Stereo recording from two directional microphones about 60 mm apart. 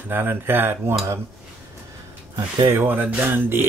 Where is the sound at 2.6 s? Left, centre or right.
Right.